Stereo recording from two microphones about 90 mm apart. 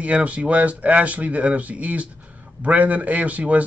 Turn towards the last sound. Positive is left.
turn(degrees=-15)  # may be behind; listen again after turning